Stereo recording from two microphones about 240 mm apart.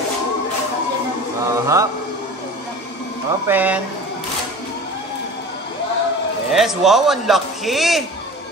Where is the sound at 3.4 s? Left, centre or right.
Centre.